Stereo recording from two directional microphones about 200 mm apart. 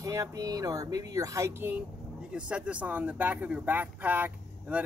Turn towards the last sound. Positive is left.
turn(degrees=-10)  # may be behind; listen again after turning